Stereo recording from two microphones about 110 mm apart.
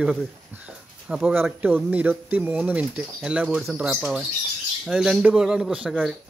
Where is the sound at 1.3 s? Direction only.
20° right (ahead or behind).